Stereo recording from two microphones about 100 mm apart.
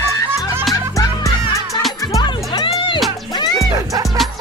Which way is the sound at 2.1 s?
45° left (ahead or behind).